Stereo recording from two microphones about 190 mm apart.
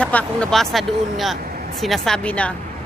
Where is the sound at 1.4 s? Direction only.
50° right (ahead or behind).